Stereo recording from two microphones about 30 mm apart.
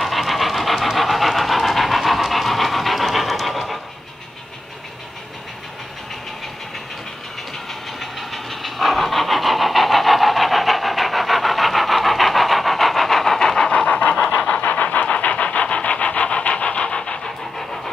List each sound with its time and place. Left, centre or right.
0.0 s pant: centre
8.0 s vehicle: centre
13.8 s pant: left
14.6 s vehicle: left
15.2 s wood: left